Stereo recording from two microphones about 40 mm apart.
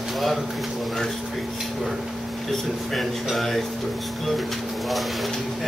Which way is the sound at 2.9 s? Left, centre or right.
Centre.